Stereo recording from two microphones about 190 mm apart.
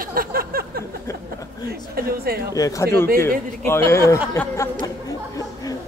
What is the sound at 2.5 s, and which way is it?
Speech, 15° left (ahead or behind).